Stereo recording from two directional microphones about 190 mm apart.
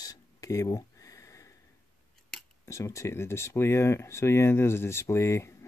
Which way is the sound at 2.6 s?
15° left (ahead or behind).